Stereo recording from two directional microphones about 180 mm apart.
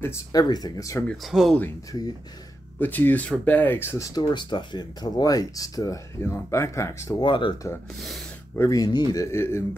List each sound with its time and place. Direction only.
0.0 s speech: 20° left (ahead or behind)
1.0 s speech: centre (ahead or behind)
1.6 s speech: 20° left (ahead or behind)